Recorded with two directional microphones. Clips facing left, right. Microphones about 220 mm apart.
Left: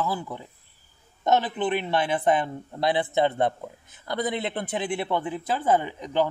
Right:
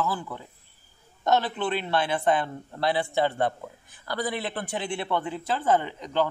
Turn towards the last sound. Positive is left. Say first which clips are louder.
# left 1 dB
turn(degrees=10)  # may be behind; listen again after turning